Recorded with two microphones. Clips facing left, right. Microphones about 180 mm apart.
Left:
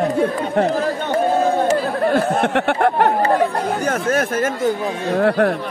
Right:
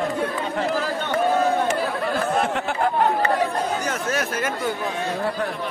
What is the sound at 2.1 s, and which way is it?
Speech, 65° left (ahead or behind).